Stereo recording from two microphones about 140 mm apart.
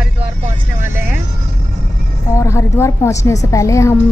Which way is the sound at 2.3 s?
20° left (ahead or behind).